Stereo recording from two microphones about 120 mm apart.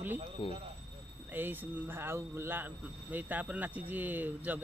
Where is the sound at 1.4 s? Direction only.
15° right (ahead or behind).